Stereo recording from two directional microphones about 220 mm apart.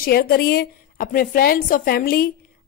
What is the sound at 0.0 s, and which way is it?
Speech, 45° left (ahead or behind).